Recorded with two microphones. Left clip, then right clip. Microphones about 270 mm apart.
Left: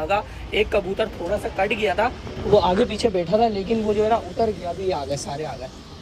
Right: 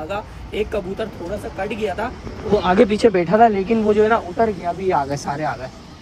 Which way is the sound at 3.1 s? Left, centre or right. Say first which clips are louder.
Right 4 dB; centre.